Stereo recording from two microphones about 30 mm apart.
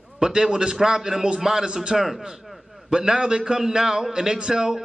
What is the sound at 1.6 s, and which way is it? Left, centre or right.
Speech, right.